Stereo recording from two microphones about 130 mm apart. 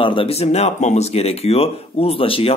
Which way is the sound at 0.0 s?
40° left (ahead or behind).